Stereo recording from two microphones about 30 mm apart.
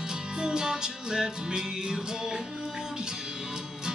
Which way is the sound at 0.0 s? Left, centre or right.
Right.